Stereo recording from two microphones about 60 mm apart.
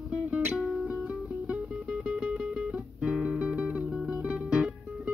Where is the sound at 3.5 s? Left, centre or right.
Right.